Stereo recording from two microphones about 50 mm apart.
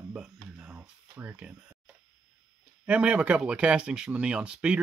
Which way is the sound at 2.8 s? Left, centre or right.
Right.